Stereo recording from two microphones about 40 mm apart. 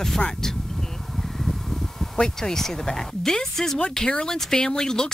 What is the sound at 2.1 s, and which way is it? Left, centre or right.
Speech, centre.